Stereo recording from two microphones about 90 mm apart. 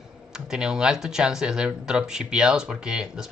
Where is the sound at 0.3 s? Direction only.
5° right (ahead or behind).